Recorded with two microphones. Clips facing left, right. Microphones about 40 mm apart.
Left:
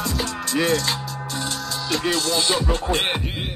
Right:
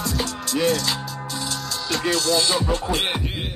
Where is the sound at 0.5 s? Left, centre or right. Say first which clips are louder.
Even; left.